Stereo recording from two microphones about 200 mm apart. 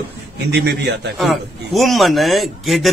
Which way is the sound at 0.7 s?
55° right (ahead or behind).